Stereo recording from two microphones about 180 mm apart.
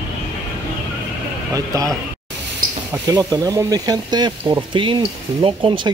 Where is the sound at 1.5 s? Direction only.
20° right (ahead or behind).